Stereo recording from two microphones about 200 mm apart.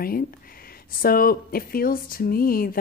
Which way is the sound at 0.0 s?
45° left (ahead or behind).